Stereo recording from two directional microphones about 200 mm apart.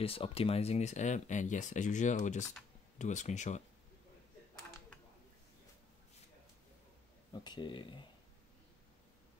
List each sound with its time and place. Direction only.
0.0 s speech: 30° left (ahead or behind)
7.4 s speech: 20° left (ahead or behind)